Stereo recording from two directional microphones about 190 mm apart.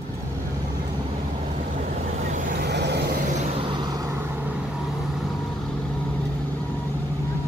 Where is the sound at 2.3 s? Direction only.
60° right (ahead or behind).